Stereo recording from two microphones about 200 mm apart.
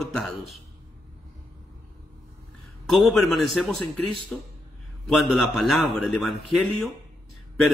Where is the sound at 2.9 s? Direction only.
Centre (ahead or behind).